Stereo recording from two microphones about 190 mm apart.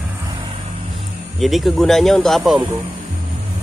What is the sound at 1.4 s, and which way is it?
Speech, centre (ahead or behind).